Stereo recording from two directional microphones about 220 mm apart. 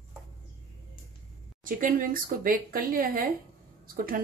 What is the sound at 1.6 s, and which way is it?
Speech, 40° right (ahead or behind).